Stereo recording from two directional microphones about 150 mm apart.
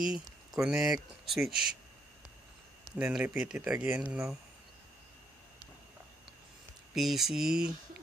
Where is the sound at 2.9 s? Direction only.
5° right (ahead or behind).